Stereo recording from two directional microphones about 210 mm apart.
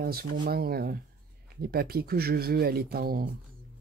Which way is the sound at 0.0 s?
45° right (ahead or behind).